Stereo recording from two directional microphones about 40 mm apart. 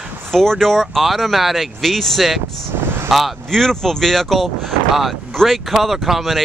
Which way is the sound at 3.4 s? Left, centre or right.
Centre.